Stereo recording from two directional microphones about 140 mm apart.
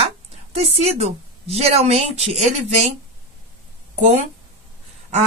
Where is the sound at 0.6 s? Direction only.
45° right (ahead or behind).